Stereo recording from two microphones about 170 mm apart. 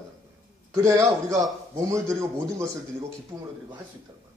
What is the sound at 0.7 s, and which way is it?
A man's voice, 20° right (ahead or behind).